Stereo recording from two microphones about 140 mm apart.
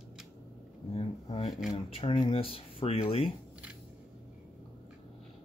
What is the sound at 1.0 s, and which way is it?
Speech, 45° left (ahead or behind).